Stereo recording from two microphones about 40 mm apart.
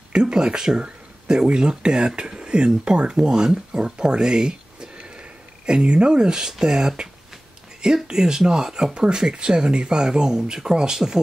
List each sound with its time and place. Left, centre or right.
0.1 s speech: right